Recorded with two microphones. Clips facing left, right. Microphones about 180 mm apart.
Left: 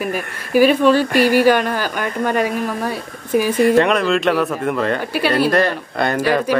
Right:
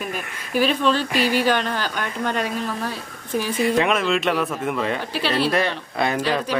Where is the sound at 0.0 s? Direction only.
5° left (ahead or behind).